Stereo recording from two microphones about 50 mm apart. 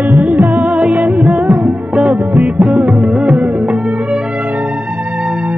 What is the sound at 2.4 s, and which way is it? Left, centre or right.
Music, right.